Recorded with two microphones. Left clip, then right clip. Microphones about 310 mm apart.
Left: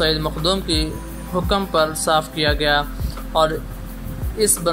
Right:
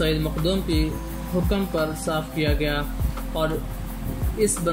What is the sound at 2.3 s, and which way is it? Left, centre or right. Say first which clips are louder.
Speech: left 7 dB; left.